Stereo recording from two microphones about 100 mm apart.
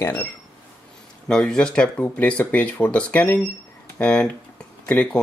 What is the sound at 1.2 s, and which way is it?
Speech, 10° left (ahead or behind).